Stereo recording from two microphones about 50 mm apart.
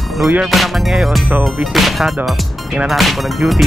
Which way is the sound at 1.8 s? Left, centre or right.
Centre.